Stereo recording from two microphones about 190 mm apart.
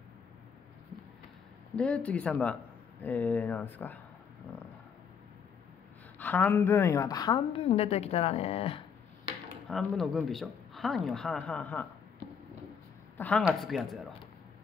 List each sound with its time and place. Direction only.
1.8 s speech: 5° left (ahead or behind)
4.5 s a sound: 5° left (ahead or behind)
6.1 s a woman's voice: 10° left (ahead or behind); by 8.8 s 30° left (ahead or behind)
9.7 s speech: centre (ahead or behind)
13.2 s speech: 5° left (ahead or behind)